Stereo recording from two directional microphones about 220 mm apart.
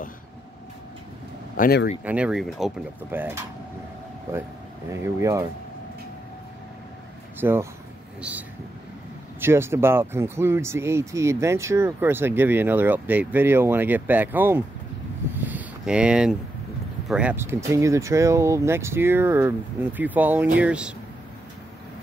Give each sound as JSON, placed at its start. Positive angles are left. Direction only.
{"t": 1.6, "sound": "speech", "side_deg": 45}
{"t": 2.0, "sound": "speech", "side_deg": -5}
{"t": 7.3, "sound": "speech", "side_deg": -10}
{"t": 15.3, "sound": "a sound", "side_deg": -10}
{"t": 17.1, "sound": "speech", "side_deg": -5}